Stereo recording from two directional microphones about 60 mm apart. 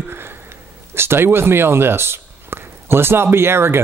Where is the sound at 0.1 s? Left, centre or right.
Right.